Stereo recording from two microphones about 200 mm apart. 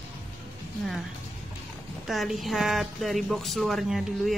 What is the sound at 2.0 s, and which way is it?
A woman's voice, centre (ahead or behind).